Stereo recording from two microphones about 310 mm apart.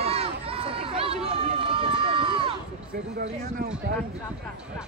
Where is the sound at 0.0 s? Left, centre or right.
Centre.